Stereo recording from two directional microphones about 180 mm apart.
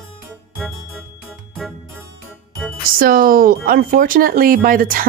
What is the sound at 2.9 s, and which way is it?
Speech, 50° right (ahead or behind).